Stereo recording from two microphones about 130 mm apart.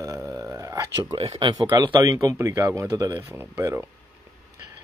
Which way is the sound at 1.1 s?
35° right (ahead or behind).